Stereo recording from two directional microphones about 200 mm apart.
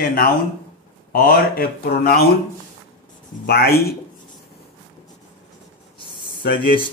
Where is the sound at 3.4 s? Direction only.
50° left (ahead or behind).